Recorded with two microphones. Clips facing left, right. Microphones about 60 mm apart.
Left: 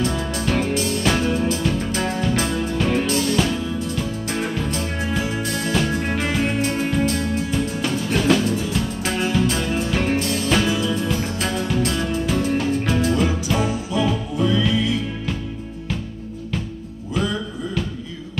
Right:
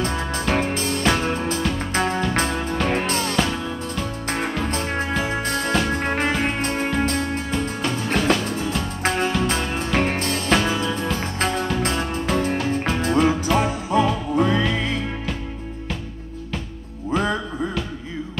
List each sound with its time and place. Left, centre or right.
0.0 s music: right
17.1 s music: right